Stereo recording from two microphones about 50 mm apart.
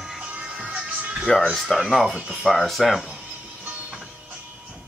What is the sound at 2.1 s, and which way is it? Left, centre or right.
Speech, right.